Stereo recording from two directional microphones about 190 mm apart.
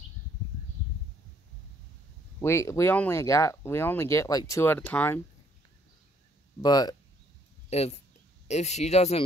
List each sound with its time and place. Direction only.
2.4 s speech: 15° left (ahead or behind)
6.6 s speech: 20° left (ahead or behind)
7.7 s speech: 35° left (ahead or behind)